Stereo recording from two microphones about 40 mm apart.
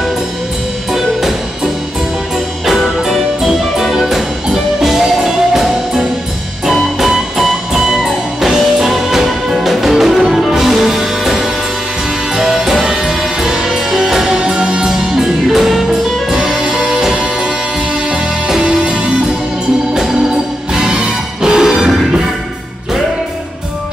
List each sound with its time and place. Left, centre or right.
0.9 s music: centre
19.9 s music: centre